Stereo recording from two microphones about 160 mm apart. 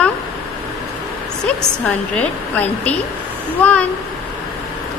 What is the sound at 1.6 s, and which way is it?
A woman's voice, 5° left (ahead or behind).